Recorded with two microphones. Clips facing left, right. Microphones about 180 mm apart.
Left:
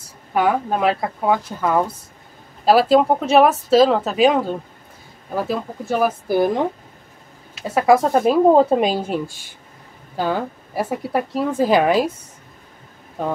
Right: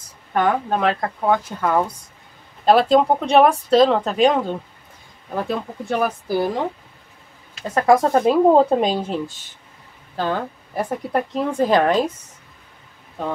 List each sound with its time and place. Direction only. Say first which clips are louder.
0.3 s speech: left 1 dB; 5° left (ahead or behind)
6.2 s speech: left 3 dB; 15° left (ahead or behind)
7.6 s speech: left 1 dB; 5° left (ahead or behind)